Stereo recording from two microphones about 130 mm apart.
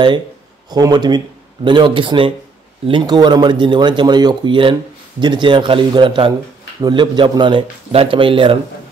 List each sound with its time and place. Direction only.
0.7 s speech: 30° right (ahead or behind)